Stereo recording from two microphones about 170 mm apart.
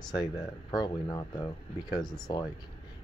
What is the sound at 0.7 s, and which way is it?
Speech, 25° left (ahead or behind).